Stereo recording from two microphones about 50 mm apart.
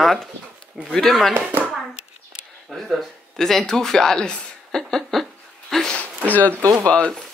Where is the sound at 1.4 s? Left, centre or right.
Right.